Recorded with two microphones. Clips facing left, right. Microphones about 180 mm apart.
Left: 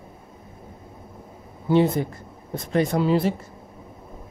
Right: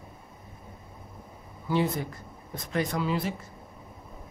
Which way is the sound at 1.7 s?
25° left (ahead or behind).